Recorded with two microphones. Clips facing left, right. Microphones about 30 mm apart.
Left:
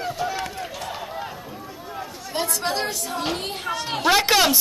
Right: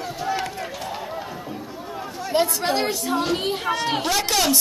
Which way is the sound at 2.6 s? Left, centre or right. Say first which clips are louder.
Right 3 dB; centre.